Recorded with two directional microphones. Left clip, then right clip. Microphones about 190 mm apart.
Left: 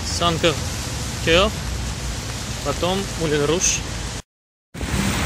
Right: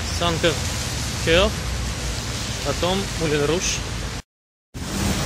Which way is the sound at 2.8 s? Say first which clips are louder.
Even; 10° left (ahead or behind).